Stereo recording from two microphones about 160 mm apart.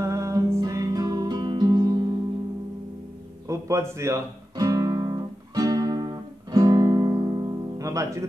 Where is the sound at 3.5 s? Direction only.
20° right (ahead or behind).